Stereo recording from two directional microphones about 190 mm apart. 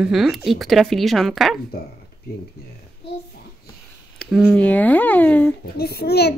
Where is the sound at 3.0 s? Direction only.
60° left (ahead or behind).